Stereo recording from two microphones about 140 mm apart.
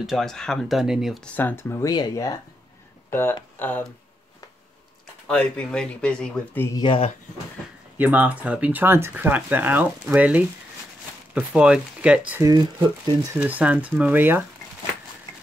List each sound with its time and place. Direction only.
0.0 s speech: centre (ahead or behind)
1.3 s speech: 15° left (ahead or behind)
3.1 s speech: 15° left (ahead or behind)
5.2 s speech: 5° left (ahead or behind)
6.8 s speech: 35° left (ahead or behind)
8.0 s speech: 10° right (ahead or behind)
12.4 s speech: 30° right (ahead or behind)
13.3 s speech: 10° right (ahead or behind)